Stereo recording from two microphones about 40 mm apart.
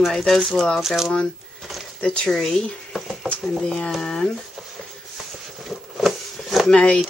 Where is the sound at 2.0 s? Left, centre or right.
Left.